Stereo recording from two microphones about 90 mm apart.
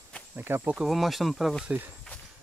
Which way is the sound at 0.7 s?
5° right (ahead or behind).